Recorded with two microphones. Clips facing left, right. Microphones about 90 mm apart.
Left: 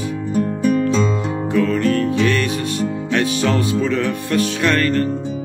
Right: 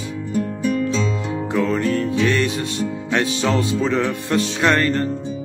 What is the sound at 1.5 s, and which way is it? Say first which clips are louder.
Music: left 3 dB; 20° right (ahead or behind).